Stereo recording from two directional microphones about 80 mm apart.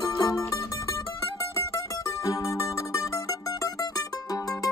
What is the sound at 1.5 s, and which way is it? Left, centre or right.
Mandolin, left.